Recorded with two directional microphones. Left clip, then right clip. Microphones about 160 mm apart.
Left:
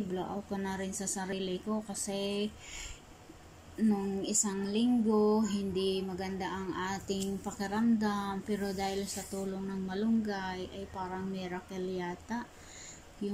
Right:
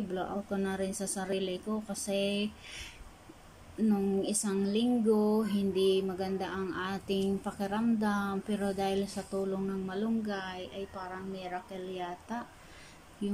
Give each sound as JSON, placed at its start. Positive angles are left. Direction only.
{"t": 0.1, "sound": "speech", "side_deg": -15}
{"t": 3.9, "sound": "speech", "side_deg": -15}